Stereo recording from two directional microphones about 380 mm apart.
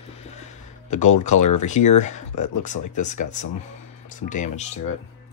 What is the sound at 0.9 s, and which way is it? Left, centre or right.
Speech, centre.